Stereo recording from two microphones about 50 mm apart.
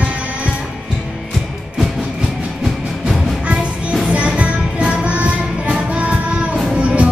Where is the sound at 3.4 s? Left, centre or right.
Right.